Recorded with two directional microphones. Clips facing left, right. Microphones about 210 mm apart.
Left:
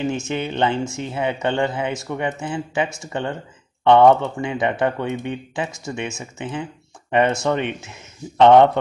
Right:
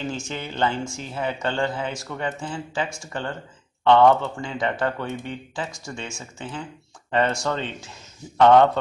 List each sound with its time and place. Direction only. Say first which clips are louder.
0.0 s speech: left 7 dB; 20° left (ahead or behind)